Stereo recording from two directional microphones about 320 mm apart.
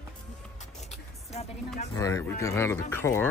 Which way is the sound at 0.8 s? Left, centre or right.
Centre.